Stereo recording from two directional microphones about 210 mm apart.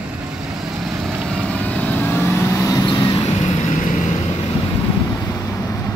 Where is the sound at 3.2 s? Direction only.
30° left (ahead or behind).